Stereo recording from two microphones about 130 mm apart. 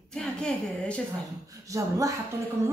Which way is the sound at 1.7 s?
25° right (ahead or behind).